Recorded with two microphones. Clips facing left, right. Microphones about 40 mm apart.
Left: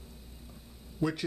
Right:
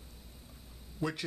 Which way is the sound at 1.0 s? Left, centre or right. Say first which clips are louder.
Left 4 dB; centre.